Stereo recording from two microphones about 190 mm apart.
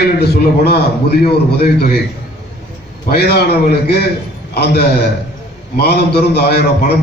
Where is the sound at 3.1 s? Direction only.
55° left (ahead or behind).